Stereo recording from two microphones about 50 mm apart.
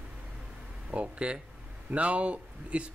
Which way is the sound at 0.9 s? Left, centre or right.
Right.